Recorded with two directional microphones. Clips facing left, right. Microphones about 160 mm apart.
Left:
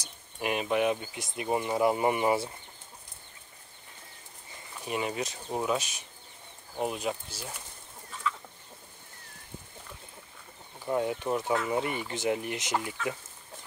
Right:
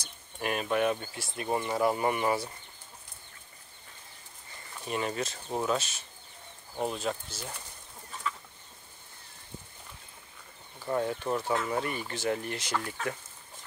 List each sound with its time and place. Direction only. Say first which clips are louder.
0.0 s speech: left 1 dB; 15° left (ahead or behind)
4.8 s speech: even; 10° left (ahead or behind)
10.9 s speech: left 1 dB; 10° left (ahead or behind)